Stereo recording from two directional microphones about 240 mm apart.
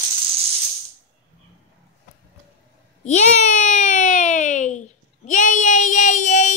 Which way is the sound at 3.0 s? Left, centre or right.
Left.